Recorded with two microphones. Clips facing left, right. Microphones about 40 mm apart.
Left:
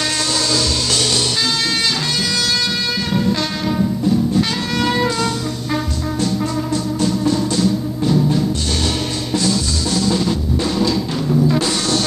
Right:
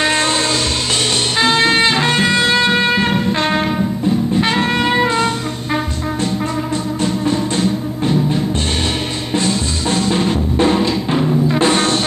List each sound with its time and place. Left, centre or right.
0.0 s music: right
7.2 s music: right
9.3 s drum: right